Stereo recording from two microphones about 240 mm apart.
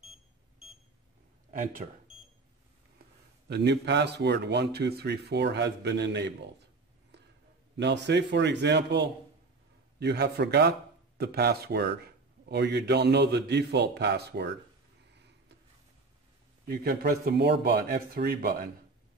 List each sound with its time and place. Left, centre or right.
0.0 s alarm clock: centre
1.5 s speech: right
3.4 s speech: right
7.7 s speech: right
16.6 s speech: right